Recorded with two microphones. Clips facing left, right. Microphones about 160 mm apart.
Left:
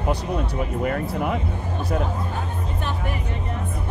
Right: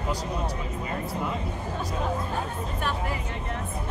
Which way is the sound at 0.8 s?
65° left (ahead or behind).